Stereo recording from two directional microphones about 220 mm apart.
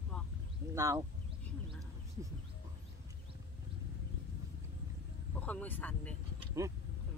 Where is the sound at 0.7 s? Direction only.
10° right (ahead or behind).